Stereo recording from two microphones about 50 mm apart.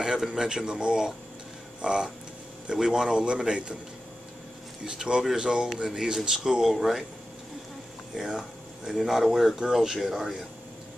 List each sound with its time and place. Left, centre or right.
0.0 s speech: centre
4.8 s speech: centre
8.3 s a sound: centre
8.9 s speech: centre